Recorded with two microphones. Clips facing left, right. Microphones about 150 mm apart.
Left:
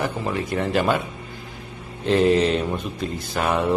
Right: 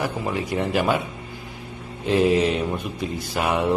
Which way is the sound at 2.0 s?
10° right (ahead or behind).